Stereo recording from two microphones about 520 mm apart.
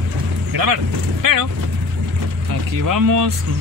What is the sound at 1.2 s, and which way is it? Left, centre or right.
Speech, right.